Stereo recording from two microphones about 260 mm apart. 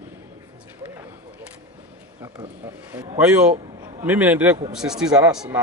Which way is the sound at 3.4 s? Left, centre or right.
Right.